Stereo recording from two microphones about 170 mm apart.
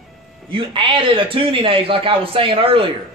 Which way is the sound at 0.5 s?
30° right (ahead or behind).